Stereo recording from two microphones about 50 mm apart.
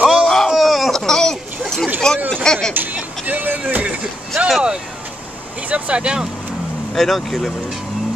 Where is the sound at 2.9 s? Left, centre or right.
Right.